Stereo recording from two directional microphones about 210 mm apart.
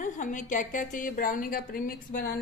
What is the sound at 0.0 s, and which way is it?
A woman's voice, 35° left (ahead or behind).